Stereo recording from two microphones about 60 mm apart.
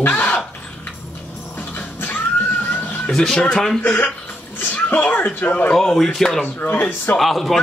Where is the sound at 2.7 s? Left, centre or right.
Left.